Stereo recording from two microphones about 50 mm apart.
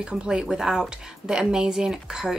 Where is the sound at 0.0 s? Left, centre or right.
Centre.